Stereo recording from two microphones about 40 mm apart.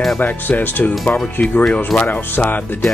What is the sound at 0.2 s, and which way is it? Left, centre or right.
Speech, left.